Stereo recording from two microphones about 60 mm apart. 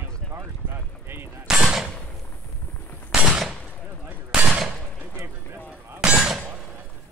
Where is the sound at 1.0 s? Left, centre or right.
Right.